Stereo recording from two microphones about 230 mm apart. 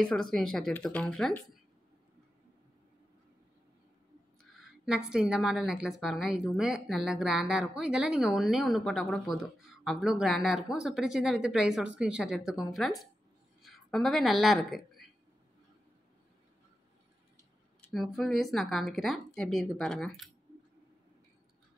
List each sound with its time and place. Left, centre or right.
0.0 s a woman's voice: centre
4.8 s a woman's voice: centre
17.9 s a woman's voice: centre